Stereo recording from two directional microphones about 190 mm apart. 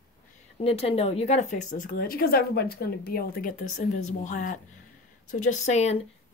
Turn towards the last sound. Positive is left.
turn(degrees=35)  # may be behind; listen again after turning